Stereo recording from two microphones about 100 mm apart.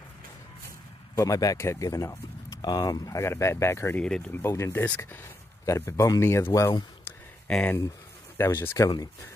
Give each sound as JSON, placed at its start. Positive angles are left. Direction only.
{"t": 1.1, "sound": "speech", "side_deg": 35}
{"t": 3.9, "sound": "speech", "side_deg": 10}
{"t": 4.3, "sound": "speech", "side_deg": 25}
{"t": 4.8, "sound": "speech", "side_deg": 15}
{"t": 5.7, "sound": "speech", "side_deg": 30}
{"t": 7.4, "sound": "speech", "side_deg": 10}
{"t": 8.4, "sound": "speech", "side_deg": 25}